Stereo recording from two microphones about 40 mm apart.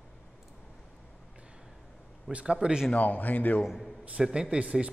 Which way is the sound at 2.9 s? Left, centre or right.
Left.